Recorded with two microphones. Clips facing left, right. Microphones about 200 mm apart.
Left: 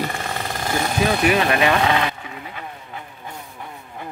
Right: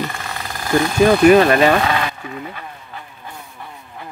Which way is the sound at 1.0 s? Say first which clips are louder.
Right 9 dB; 45° right (ahead or behind).